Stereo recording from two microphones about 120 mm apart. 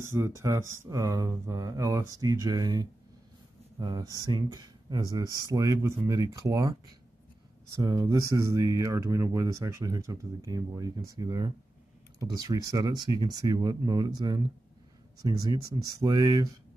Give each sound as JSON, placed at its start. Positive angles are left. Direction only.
{"t": 0.0, "sound": "speech", "side_deg": -25}